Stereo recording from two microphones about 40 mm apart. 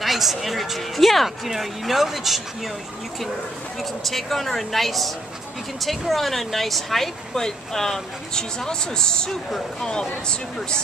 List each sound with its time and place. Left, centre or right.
0.0 s speech: centre
3.8 s speech: centre; by 10.8 s left